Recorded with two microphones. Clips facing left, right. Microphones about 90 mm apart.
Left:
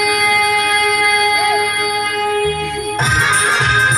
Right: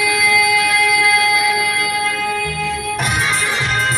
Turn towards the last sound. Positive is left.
turn(degrees=65)  # may be behind; listen again after turning